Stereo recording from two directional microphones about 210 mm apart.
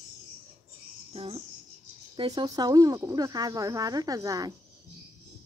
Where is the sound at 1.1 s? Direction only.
25° right (ahead or behind).